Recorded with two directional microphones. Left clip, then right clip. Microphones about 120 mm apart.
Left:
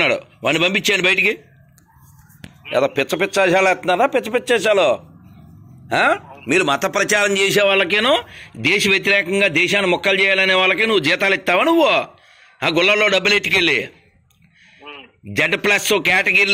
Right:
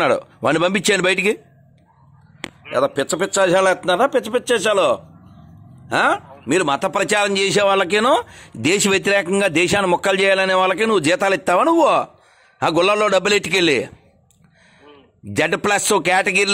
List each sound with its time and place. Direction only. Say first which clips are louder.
0.0 s speech: even; 60° right (ahead or behind)
2.6 s a man's voice: left 1 dB; centre (ahead or behind); by 8.0 s 25° right (ahead or behind)
8.0 s a man's voice: even; 40° right (ahead or behind)
15.2 s a man's voice: left 1 dB; 35° right (ahead or behind)